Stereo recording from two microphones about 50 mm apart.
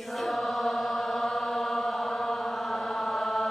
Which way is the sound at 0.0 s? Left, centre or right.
Centre.